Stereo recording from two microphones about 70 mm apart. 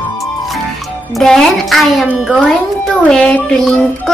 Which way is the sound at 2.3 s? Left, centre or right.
Centre.